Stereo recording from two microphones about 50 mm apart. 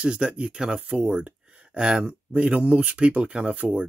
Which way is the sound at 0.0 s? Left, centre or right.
Centre.